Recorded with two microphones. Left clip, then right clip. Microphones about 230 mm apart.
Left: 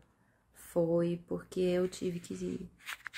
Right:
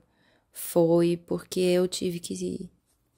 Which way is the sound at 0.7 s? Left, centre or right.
Right.